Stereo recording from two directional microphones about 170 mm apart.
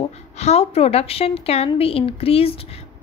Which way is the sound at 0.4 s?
35° left (ahead or behind).